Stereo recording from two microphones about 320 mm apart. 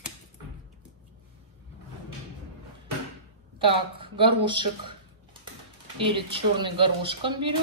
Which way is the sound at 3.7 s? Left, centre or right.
Centre.